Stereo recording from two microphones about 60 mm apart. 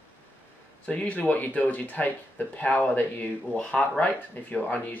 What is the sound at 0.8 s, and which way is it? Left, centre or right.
Speech, left.